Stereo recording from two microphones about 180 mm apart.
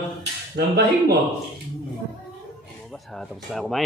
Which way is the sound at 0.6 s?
60° right (ahead or behind).